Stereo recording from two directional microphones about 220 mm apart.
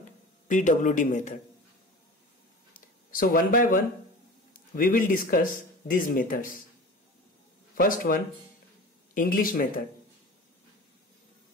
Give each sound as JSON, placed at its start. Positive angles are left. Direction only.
{"t": 0.5, "sound": "speech", "side_deg": 35}
{"t": 2.7, "sound": "a sound", "side_deg": 40}
{"t": 4.7, "sound": "speech", "side_deg": 40}
{"t": 7.7, "sound": "speech", "side_deg": 40}